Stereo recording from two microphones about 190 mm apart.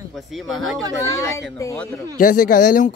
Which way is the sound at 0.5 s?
Centre (ahead or behind).